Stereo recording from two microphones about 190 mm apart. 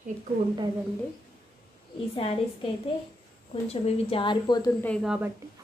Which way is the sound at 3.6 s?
30° left (ahead or behind).